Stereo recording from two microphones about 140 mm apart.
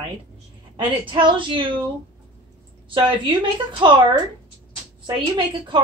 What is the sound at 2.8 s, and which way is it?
A woman's voice, 40° right (ahead or behind).